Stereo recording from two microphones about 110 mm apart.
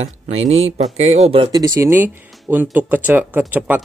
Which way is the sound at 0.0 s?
75° right (ahead or behind).